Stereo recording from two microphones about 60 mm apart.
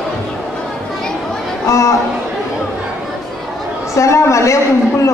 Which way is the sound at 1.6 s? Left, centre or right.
Left.